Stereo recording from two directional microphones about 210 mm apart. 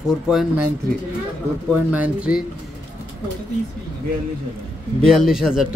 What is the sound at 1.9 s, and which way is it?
Speech, 5° right (ahead or behind).